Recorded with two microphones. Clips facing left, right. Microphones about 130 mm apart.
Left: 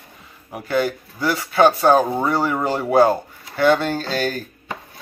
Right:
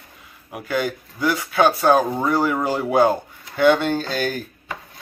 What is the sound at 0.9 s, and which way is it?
Speech, 15° left (ahead or behind).